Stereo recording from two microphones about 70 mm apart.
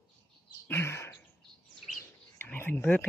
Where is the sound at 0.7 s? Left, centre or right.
Left.